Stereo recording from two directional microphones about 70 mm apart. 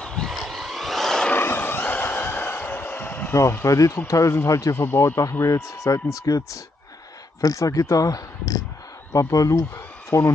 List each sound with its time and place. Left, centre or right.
0.0 s a sound: centre
0.4 s vehicle: centre
1.3 s a sound: left
3.6 s speech: left
4.7 s speech: left
5.4 s speech: left